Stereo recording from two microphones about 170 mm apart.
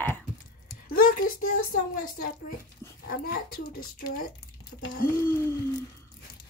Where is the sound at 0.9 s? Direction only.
55° left (ahead or behind).